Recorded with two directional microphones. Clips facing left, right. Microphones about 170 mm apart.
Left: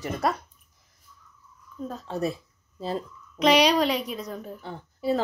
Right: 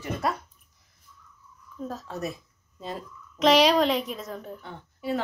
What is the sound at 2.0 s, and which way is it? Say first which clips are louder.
Speech: left 5 dB; 30° left (ahead or behind).